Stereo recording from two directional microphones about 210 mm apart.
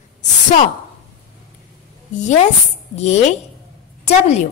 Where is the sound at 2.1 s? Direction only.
35° left (ahead or behind).